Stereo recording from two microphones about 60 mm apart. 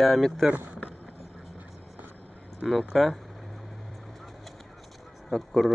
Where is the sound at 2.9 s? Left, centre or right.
Centre.